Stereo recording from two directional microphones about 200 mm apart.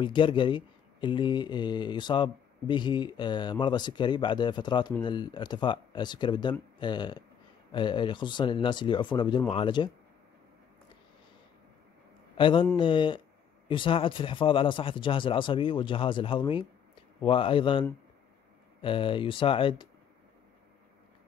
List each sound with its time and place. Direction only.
0.0 s speech: 25° left (ahead or behind)
12.4 s speech: 25° left (ahead or behind)